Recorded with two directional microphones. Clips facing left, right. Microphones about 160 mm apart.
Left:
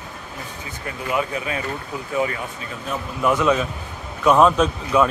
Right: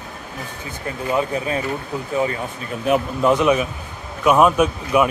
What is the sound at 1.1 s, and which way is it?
Speech, 30° right (ahead or behind).